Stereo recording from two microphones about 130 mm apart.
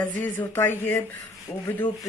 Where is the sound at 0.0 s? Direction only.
15° left (ahead or behind).